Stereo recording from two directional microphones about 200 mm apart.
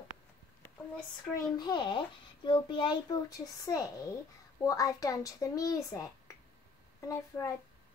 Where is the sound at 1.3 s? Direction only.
20° left (ahead or behind).